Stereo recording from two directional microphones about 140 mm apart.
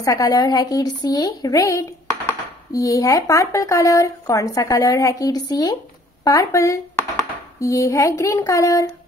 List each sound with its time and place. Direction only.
0.0 s speech: 25° left (ahead or behind)